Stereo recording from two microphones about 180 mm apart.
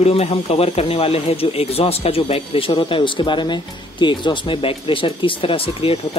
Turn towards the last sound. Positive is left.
turn(degrees=30)  # may be behind; listen again after turning